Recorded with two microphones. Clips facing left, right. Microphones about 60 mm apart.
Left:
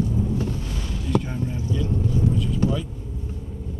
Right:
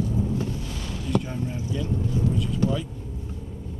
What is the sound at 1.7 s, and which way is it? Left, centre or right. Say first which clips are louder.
Boat: left 3 dB; centre.